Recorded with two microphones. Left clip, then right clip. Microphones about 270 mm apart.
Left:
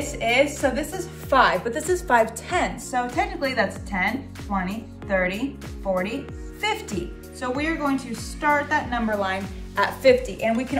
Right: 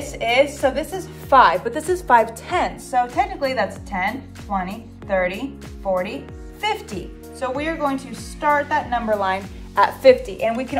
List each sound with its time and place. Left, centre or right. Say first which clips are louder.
0.2 s a woman's voice: right 3 dB; centre